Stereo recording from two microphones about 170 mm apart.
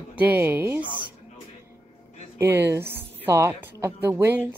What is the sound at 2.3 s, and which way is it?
A woman's voice, 15° right (ahead or behind).